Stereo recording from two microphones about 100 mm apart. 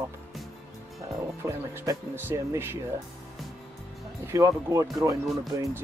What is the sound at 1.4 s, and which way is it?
Speech, 25° right (ahead or behind).